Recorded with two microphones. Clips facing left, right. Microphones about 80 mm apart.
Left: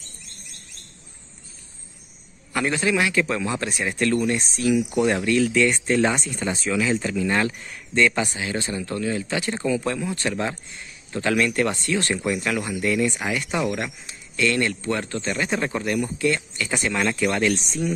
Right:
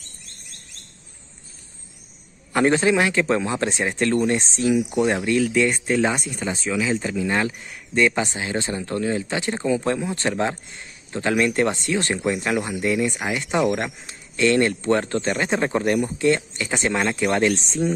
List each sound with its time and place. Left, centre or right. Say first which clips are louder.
2.5 s a man's voice: right 5 dB; right
13.7 s speech: right 4 dB; right